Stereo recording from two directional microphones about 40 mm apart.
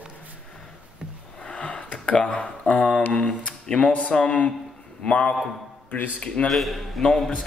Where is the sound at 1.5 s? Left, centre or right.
Left.